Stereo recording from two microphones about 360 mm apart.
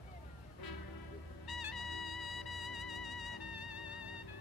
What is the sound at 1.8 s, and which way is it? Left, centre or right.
Music, left.